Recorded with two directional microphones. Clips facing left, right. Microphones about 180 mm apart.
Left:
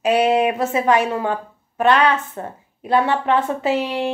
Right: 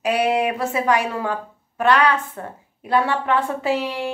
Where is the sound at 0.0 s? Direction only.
25° left (ahead or behind).